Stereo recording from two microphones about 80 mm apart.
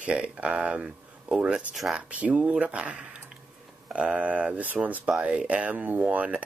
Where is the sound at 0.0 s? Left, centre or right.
Centre.